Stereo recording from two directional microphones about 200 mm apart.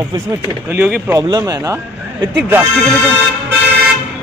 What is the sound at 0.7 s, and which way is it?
Speech, 10° right (ahead or behind).